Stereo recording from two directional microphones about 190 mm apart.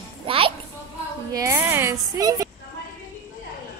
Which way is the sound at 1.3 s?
15° right (ahead or behind).